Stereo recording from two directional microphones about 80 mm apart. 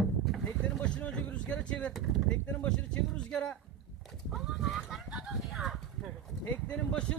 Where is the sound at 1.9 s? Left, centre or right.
Centre.